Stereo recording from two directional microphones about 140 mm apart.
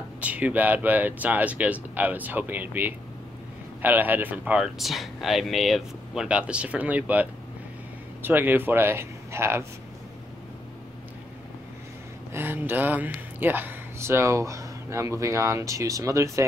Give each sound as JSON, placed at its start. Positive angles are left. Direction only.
{"t": 0.2, "sound": "speech", "side_deg": -10}
{"t": 12.3, "sound": "speech", "side_deg": -15}